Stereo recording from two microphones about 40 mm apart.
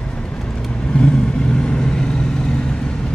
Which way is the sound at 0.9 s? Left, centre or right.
Left.